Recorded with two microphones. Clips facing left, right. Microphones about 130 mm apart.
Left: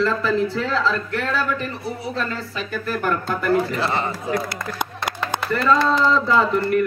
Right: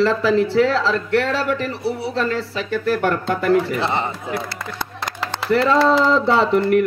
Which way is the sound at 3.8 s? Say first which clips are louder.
Right 1 dB; 25° right (ahead or behind).